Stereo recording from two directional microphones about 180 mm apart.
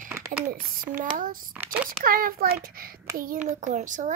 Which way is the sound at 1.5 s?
10° right (ahead or behind).